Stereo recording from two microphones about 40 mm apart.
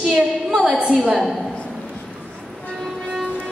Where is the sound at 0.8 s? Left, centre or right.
Centre.